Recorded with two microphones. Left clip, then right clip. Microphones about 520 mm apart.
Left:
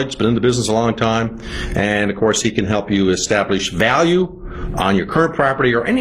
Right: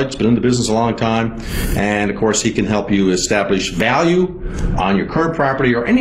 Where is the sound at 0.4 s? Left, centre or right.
Left.